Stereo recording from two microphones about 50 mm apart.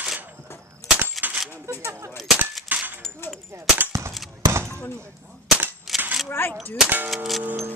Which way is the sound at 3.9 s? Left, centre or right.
Right.